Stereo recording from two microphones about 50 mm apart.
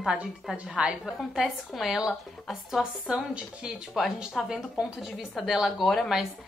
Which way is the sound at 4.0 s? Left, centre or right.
Centre.